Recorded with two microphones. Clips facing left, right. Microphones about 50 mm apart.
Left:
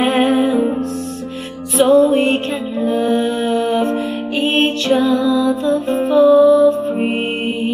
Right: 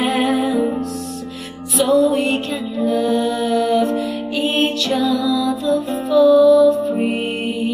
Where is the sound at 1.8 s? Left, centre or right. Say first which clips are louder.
Left 4 dB; left.